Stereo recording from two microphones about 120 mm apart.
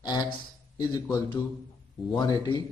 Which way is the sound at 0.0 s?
40° left (ahead or behind).